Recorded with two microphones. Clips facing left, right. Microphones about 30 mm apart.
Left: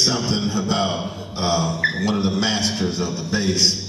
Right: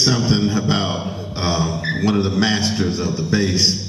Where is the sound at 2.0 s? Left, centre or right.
Centre.